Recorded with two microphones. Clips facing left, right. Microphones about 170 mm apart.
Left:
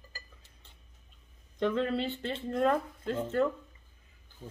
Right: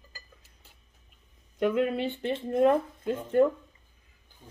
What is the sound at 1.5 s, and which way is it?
Speech, 10° right (ahead or behind).